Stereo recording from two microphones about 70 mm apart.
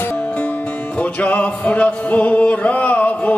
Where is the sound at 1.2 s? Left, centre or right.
Centre.